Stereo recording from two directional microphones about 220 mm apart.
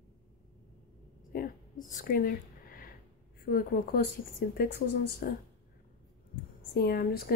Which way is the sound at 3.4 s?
40° left (ahead or behind).